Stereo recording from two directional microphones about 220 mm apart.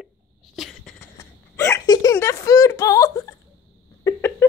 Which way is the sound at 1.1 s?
15° left (ahead or behind).